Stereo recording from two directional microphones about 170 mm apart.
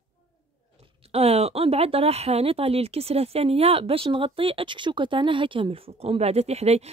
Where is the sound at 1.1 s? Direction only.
40° right (ahead or behind).